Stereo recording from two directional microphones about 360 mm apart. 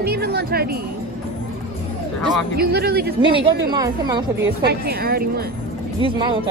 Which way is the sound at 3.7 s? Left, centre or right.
Centre.